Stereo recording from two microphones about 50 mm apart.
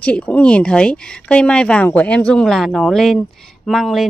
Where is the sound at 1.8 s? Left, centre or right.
Left.